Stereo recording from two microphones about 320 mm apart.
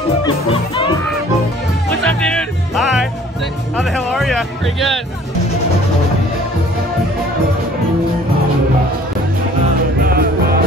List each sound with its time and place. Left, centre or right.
0.5 s speech: centre
1.9 s music: centre
3.7 s speech: centre
10.0 s music: right